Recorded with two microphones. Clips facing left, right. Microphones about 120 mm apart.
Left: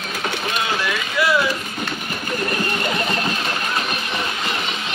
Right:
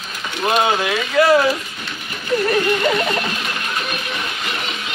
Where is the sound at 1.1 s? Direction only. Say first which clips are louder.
Right 6 dB; 45° right (ahead or behind).